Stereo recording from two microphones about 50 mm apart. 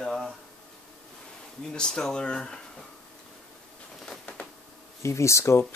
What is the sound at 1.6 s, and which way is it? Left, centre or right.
Speech, centre.